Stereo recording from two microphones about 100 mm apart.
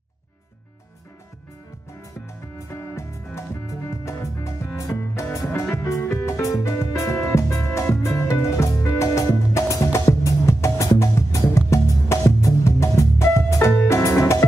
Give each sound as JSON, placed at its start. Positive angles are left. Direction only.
{"t": 3.0, "sound": "music", "side_deg": 30}